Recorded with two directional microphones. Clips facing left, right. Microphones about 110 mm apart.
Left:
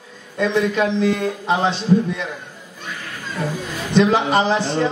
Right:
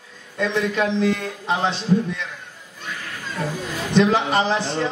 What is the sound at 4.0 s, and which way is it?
Speech, 15° left (ahead or behind).